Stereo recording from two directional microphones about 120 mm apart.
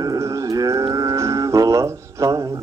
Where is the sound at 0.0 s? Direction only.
30° right (ahead or behind).